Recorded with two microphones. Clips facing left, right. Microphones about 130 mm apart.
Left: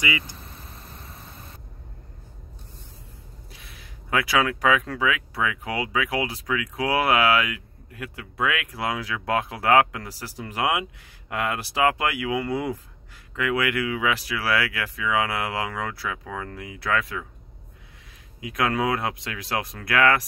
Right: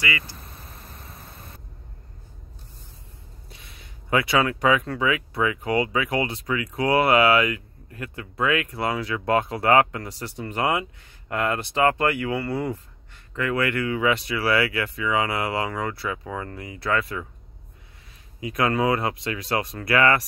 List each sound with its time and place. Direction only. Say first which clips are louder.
0.0 s speech: left 1 dB; 20° left (ahead or behind)
3.4 s speech: right 1 dB; centre (ahead or behind)
18.4 s speech: right 2 dB; centre (ahead or behind)